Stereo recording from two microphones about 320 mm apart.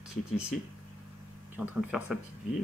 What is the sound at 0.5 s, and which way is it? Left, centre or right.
Speech, centre.